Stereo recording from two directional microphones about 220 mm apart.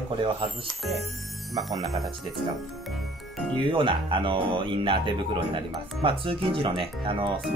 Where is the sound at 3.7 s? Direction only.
20° right (ahead or behind).